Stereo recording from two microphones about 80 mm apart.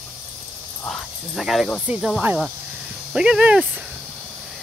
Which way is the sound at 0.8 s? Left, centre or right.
Centre.